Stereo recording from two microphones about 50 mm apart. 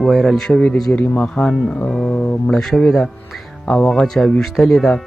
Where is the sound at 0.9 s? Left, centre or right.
Centre.